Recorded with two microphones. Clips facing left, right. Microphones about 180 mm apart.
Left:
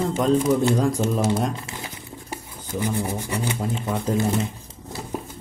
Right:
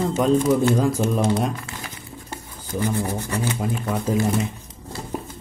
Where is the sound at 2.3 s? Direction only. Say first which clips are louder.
Even; 15° left (ahead or behind).